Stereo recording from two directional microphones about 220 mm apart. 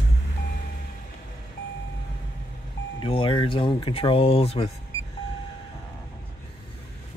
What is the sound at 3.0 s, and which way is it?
Speech, 20° left (ahead or behind).